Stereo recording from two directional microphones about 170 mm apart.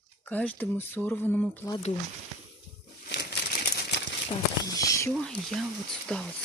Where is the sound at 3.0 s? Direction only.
75° left (ahead or behind).